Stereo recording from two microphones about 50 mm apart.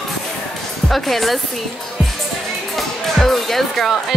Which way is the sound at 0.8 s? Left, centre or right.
Centre.